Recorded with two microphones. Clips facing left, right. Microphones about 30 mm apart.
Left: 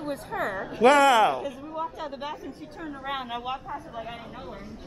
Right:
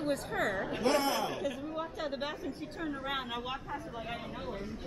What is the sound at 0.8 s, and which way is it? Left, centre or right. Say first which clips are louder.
Speech: left 14 dB; left.